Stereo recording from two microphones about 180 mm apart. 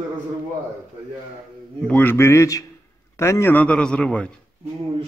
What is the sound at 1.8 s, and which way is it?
Speech, 10° left (ahead or behind).